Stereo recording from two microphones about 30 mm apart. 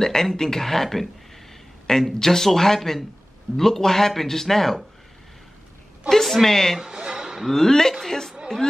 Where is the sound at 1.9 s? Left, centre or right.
Left.